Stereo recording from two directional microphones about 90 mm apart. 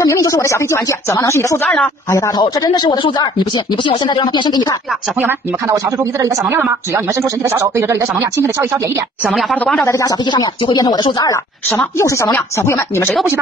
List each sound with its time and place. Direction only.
0.0 s speech: 40° left (ahead or behind)
1.6 s a woman's voice: 10° left (ahead or behind)
2.0 s speech: 35° left (ahead or behind)
2.5 s speech: 50° left (ahead or behind)
3.0 s speech: 60° left (ahead or behind)
5.7 s speech: 35° right (ahead or behind)
6.4 s a woman's voice: 20° right (ahead or behind)
9.3 s speech: centre (ahead or behind)
9.8 s speech: 35° left (ahead or behind)
10.2 s speech: 55° left (ahead or behind)
12.0 s speech: 30° left (ahead or behind)